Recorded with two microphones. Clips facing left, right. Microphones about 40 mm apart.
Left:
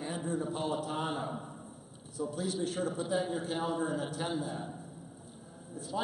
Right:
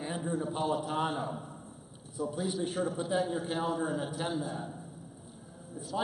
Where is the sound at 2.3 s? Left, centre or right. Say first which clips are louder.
Right 1 dB; centre.